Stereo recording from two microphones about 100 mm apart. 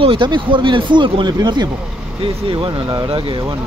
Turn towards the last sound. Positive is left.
turn(degrees=-60)  # may be behind; listen again after turning